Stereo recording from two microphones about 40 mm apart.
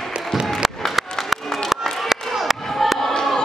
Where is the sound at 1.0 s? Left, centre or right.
Centre.